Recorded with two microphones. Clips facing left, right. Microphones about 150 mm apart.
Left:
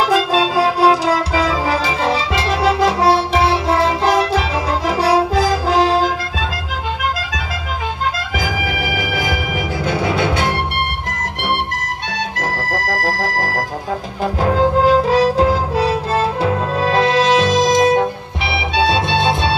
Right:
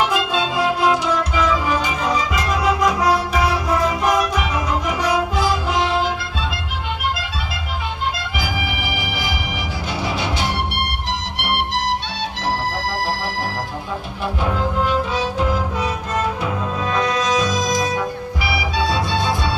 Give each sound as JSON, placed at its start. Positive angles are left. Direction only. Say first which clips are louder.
{"t": 0.0, "sound": "music", "louder": "left 5 dB", "side_deg": 35}
{"t": 1.1, "sound": "music", "louder": "left 2 dB", "side_deg": 90}
{"t": 2.0, "sound": "music", "louder": "left 2 dB", "side_deg": 30}
{"t": 9.8, "sound": "music", "louder": "left 6 dB", "side_deg": 55}
{"t": 12.4, "sound": "organ", "louder": "right 1 dB", "side_deg": 45}
{"t": 14.4, "sound": "music", "louder": "left 7 dB", "side_deg": 90}
{"t": 15.0, "sound": "music", "louder": "left 9 dB", "side_deg": 35}
{"t": 16.8, "sound": "music", "louder": "left 6 dB", "side_deg": 30}